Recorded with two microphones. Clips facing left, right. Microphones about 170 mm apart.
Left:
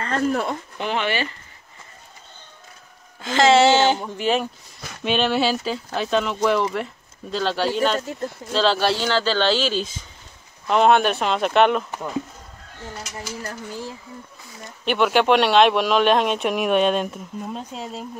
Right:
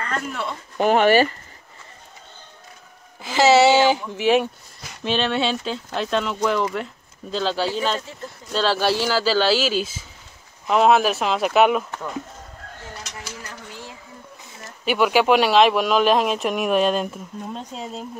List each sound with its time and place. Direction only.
0.0 s speech: 35° left (ahead or behind)
0.7 s speech: 45° right (ahead or behind)
3.2 s speech: 5° right (ahead or behind)
13.5 s speech: 40° left (ahead or behind)
14.6 s speech: 5° right (ahead or behind)